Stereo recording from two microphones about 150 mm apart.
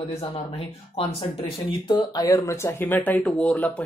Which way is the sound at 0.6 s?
40° left (ahead or behind).